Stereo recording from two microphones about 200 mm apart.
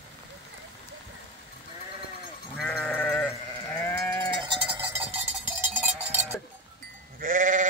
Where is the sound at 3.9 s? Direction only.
10° left (ahead or behind).